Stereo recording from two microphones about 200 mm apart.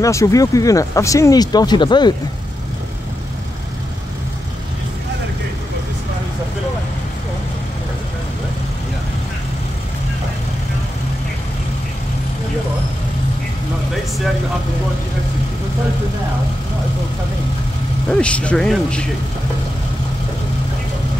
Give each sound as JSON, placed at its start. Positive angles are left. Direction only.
{"t": 0.0, "sound": "speech", "side_deg": 15}
{"t": 18.1, "sound": "speech", "side_deg": 5}